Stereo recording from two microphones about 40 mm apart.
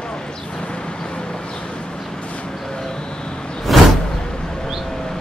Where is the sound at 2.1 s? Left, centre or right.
Left.